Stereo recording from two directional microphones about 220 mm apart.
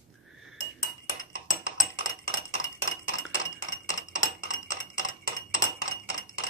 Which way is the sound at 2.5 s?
60° left (ahead or behind).